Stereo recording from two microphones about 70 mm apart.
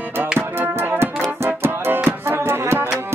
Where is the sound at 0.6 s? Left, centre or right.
Right.